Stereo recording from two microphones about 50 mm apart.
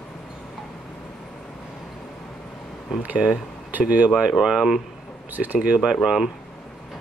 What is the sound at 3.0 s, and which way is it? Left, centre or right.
Speech, right.